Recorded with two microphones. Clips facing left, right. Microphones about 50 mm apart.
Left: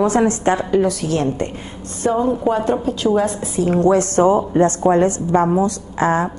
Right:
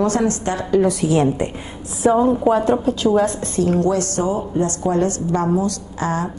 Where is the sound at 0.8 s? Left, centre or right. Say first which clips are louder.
Right 2 dB; centre.